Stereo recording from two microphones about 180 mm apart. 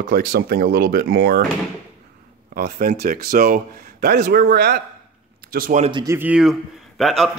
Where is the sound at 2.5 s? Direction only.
55° right (ahead or behind).